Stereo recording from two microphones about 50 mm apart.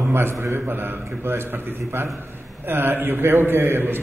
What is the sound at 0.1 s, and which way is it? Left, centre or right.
A man's voice, right.